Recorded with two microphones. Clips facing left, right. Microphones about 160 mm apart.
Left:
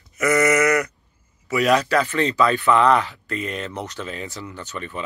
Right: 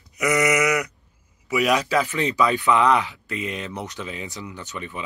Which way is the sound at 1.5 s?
10° right (ahead or behind).